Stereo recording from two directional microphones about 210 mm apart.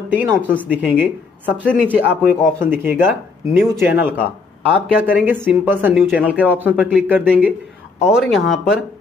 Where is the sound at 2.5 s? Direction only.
10° right (ahead or behind).